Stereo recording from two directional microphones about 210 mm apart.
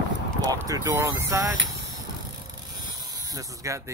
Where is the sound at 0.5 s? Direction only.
15° right (ahead or behind).